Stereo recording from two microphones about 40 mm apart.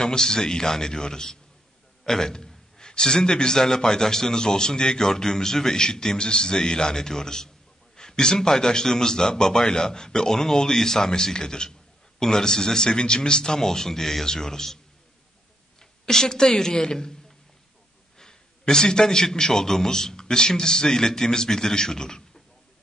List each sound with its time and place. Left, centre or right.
0.0 s a man's voice: centre
15.8 s a woman's voice: centre
18.1 s a man's voice: centre